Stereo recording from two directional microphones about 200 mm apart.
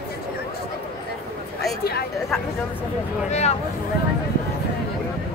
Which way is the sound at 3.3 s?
35° left (ahead or behind).